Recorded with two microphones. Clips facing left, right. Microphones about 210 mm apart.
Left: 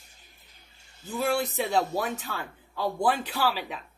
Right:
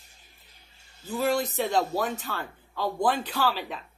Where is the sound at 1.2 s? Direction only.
10° left (ahead or behind).